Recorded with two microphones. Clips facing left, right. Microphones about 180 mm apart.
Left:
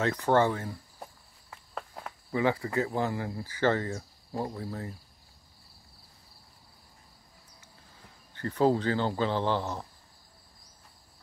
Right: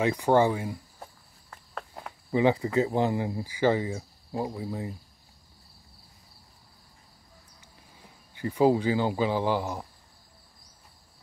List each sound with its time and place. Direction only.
0.0 s speech: 10° right (ahead or behind)
1.5 s cricket: 5° left (ahead or behind)
2.3 s speech: 20° right (ahead or behind)
8.0 s speech: 10° right (ahead or behind)